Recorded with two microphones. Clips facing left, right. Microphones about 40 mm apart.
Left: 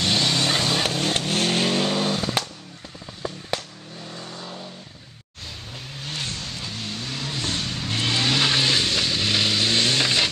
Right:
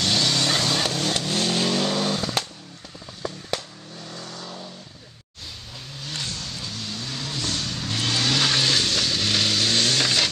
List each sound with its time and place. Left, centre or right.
0.0 s vehicle: centre
1.1 s vehicle: left
6.0 s vehicle: left